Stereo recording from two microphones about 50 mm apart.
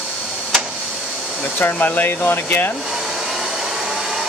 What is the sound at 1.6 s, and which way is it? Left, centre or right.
Speech, left.